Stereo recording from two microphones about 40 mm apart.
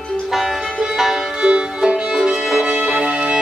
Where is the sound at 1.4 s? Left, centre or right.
Right.